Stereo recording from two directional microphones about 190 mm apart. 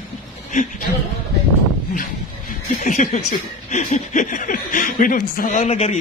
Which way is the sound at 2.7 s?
40° left (ahead or behind).